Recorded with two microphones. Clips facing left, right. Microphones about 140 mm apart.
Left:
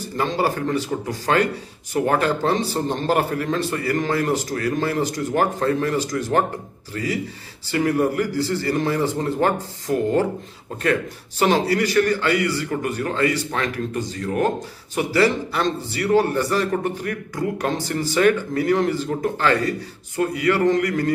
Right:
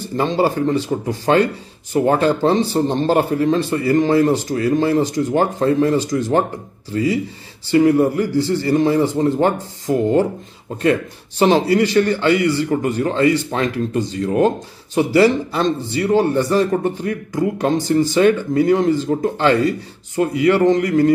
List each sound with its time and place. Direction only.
0.2 s a man's voice: 25° right (ahead or behind)